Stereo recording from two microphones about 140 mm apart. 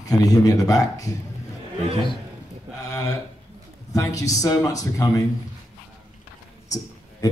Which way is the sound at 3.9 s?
25° left (ahead or behind).